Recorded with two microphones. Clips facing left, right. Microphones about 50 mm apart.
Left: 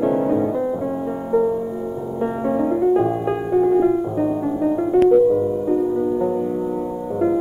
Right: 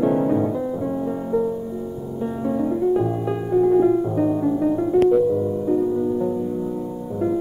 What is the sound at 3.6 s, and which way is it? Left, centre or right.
Music, centre.